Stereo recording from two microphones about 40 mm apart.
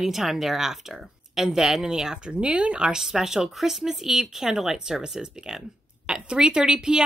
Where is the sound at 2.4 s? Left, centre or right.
Right.